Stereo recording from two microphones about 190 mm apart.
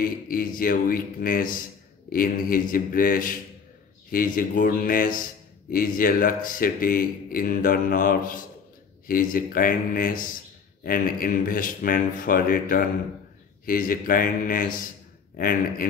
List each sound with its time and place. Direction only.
0.0 s a man's voice: 50° left (ahead or behind)